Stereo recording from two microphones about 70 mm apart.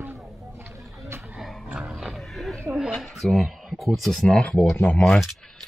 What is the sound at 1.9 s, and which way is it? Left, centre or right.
Roaring cats, centre.